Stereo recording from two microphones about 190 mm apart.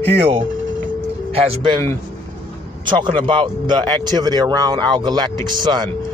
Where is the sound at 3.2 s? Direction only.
25° right (ahead or behind).